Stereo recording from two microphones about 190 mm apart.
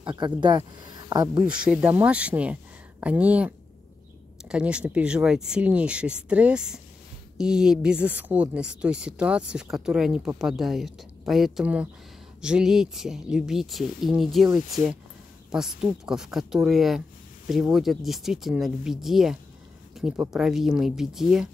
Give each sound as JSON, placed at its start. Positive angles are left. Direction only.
{"t": 0.0, "sound": "speech", "side_deg": -25}
{"t": 1.4, "sound": "a woman's voice", "side_deg": -5}